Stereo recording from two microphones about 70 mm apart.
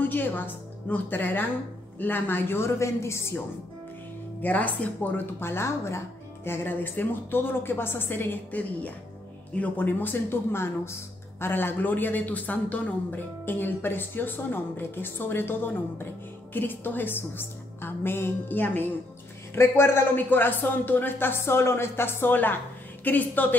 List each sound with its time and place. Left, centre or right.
0.0 s a man's voice: left
4.4 s a man's voice: left